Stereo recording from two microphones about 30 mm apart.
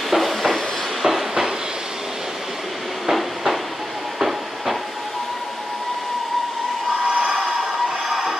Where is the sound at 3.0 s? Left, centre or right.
Centre.